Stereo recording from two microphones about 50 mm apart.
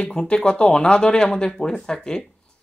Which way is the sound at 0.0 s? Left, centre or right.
Centre.